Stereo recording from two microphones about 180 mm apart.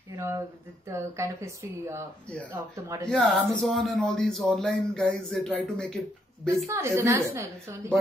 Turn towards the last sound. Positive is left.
turn(degrees=-15)  # may be behind; listen again after turning